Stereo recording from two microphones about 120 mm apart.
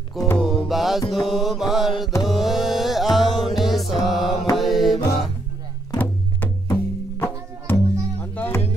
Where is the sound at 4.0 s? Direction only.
Centre (ahead or behind).